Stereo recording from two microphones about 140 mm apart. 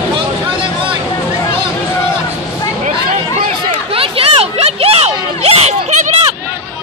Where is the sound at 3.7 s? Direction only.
40° right (ahead or behind).